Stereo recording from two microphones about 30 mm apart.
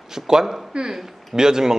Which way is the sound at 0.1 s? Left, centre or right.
Centre.